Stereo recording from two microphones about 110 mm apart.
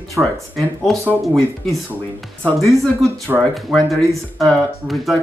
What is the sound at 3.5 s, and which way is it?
Speech, centre (ahead or behind).